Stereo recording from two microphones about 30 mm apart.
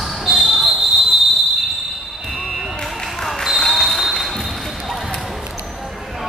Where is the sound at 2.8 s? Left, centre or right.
Centre.